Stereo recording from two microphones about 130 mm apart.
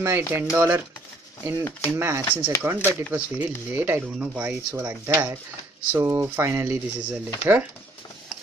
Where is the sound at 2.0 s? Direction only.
20° right (ahead or behind).